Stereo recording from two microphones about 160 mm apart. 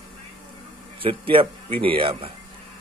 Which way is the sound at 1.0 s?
35° right (ahead or behind).